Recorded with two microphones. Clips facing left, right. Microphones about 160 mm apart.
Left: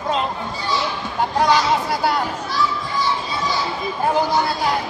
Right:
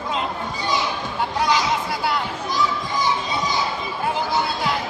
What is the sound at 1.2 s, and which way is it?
Children playing, 45° left (ahead or behind).